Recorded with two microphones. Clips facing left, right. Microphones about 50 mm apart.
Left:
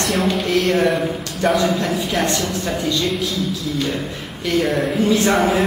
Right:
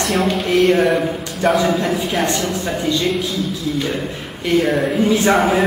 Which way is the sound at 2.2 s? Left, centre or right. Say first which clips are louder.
Right 1 dB; centre.